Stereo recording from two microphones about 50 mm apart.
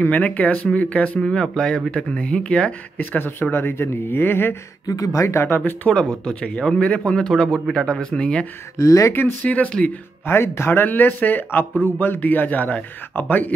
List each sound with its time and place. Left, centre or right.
0.0 s speech: left
1.2 s speech: centre
3.0 s speech: left
3.5 s speech: left
5.1 s speech: left
5.6 s speech: left
7.2 s speech: centre
8.7 s speech: left
9.7 s speech: left
10.2 s speech: left
10.9 s speech: left
12.2 s speech: left